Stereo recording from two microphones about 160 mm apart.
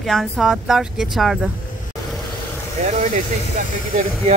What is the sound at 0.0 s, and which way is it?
Speech, centre (ahead or behind).